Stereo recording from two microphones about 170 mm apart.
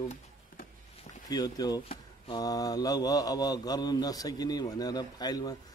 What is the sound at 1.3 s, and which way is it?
Mantra, 25° left (ahead or behind).